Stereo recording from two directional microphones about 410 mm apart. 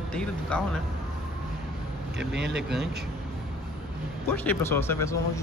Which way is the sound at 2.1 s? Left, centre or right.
Right.